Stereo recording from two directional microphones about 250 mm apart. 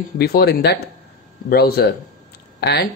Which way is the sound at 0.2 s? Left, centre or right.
Left.